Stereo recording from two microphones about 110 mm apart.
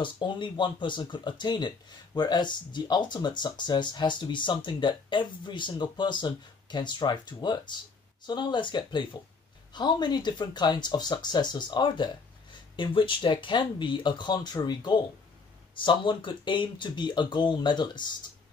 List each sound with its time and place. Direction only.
0.0 s speech: 45° left (ahead or behind)